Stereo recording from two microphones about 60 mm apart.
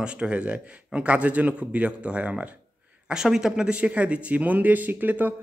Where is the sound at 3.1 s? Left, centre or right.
Centre.